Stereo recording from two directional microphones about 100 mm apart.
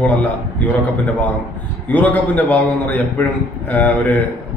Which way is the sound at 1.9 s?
15° left (ahead or behind).